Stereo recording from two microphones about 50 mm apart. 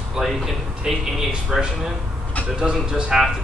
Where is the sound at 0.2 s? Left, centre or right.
Centre.